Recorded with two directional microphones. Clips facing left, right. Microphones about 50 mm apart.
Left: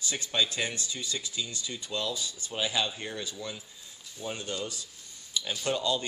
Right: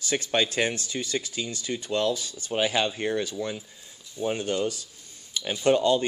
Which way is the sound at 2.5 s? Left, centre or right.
Right.